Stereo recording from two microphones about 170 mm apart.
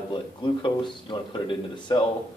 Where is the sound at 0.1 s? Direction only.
30° left (ahead or behind).